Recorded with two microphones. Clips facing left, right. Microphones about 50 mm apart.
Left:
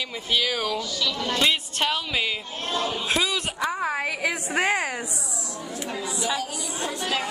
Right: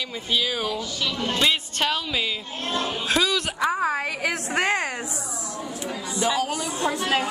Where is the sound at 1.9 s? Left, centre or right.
Left.